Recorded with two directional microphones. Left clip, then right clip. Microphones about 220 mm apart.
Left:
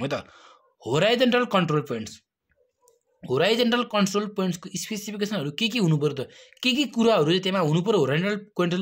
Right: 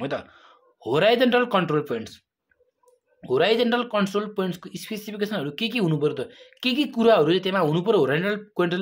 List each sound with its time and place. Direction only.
0.0 s speech: 35° left (ahead or behind)